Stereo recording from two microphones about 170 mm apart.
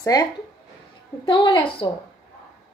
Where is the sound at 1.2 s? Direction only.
30° left (ahead or behind).